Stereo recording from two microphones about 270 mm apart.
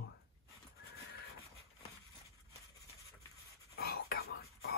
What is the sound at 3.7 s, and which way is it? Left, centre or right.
Whispering, left.